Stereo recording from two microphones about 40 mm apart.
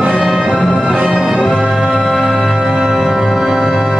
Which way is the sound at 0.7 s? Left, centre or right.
Right.